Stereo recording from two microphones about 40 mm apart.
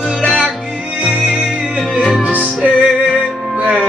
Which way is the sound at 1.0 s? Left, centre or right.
Right.